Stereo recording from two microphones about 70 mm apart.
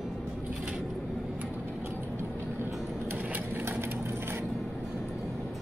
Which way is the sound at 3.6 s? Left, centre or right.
Right.